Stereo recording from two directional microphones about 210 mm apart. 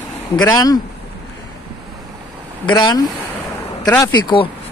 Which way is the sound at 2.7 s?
20° left (ahead or behind).